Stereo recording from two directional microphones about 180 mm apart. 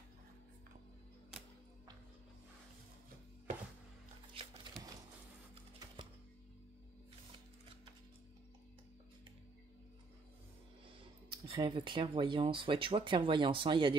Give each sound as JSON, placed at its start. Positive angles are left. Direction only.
{"t": 5.5, "sound": "typing", "side_deg": -25}
{"t": 11.4, "sound": "speech", "side_deg": -30}